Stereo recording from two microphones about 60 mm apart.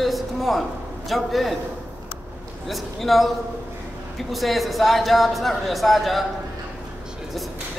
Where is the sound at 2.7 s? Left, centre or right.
Centre.